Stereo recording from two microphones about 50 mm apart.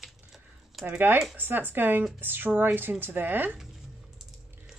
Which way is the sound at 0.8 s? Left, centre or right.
Right.